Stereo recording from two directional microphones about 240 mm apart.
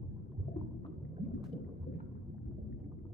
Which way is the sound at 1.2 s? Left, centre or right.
Right.